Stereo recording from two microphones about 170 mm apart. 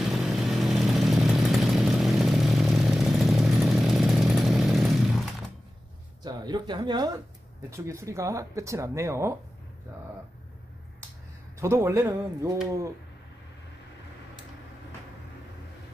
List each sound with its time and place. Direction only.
0.1 s chainsaw: centre (ahead or behind)
6.2 s a sound: 25° right (ahead or behind)
7.7 s speech: 15° right (ahead or behind)
11.6 s speech: 15° right (ahead or behind)